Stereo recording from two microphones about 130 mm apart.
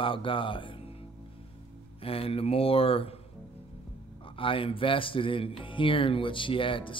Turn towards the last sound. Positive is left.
turn(degrees=40)  # may be behind; listen again after turning